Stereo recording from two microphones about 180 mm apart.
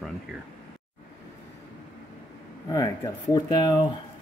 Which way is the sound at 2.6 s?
20° left (ahead or behind).